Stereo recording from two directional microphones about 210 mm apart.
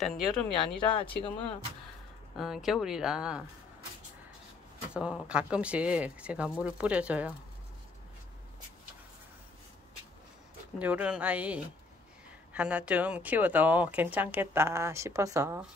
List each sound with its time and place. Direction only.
0.6 s speech: 25° left (ahead or behind)
2.3 s speech: centre (ahead or behind)
4.9 s speech: 5° right (ahead or behind)
10.8 s speech: 5° right (ahead or behind)